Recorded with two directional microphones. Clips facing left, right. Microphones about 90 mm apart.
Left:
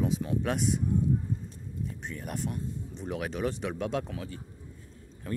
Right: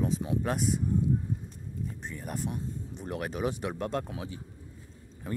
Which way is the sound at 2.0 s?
Centre (ahead or behind).